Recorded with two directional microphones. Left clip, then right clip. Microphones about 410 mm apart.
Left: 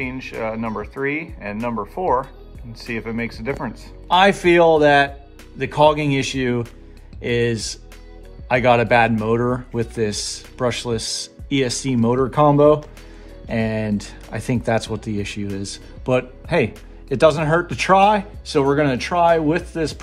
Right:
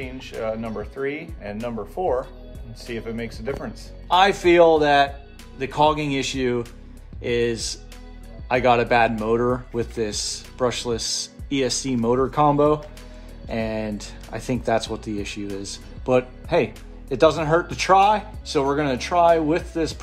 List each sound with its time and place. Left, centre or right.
0.0 s speech: centre
4.1 s speech: centre